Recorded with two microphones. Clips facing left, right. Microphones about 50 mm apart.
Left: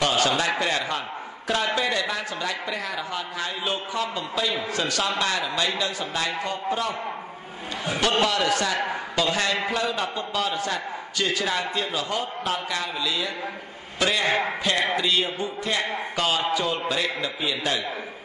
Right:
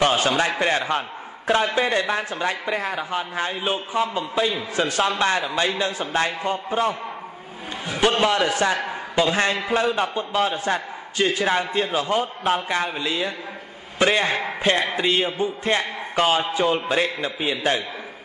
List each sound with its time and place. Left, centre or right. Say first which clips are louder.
0.0 s a sound: right 3 dB; right
0.6 s a man's voice: right 4 dB; right
8.1 s a man's voice: right 1 dB; right